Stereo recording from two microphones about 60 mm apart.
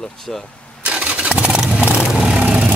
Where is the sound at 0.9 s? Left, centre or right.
Centre.